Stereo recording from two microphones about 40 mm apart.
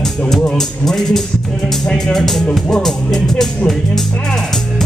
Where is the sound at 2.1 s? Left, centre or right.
Centre.